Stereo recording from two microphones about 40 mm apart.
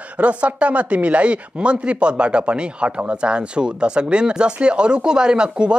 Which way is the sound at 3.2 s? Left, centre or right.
Right.